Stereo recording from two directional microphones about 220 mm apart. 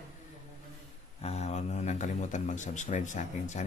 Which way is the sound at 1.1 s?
30° left (ahead or behind).